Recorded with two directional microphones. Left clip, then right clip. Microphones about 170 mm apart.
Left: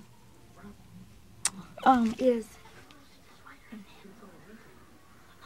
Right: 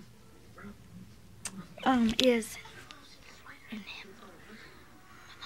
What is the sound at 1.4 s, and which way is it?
Vehicle, 10° left (ahead or behind).